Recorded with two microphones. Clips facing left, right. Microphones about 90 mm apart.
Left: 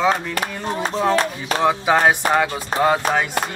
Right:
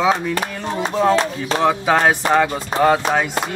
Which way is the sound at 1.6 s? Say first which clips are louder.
Even; 5° left (ahead or behind).